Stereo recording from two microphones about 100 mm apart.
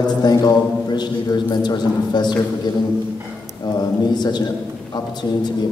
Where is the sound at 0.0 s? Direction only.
40° left (ahead or behind).